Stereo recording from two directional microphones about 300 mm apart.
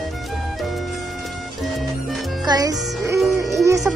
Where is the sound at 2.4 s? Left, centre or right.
Centre.